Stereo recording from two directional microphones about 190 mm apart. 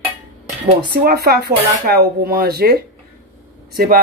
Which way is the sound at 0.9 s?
60° right (ahead or behind).